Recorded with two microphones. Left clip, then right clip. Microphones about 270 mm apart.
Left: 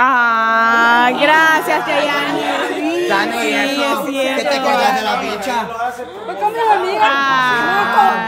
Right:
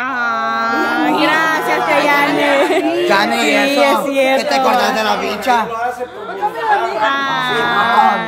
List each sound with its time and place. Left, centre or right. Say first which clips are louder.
0.0 s a sound: left 5 dB; centre
3.1 s speech: right 3 dB; right
3.7 s speech: right 5 dB; centre
7.1 s speech: left 2 dB; centre